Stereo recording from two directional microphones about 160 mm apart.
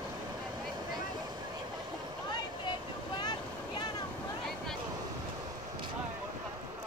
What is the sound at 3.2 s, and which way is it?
Vehicle, 25° left (ahead or behind).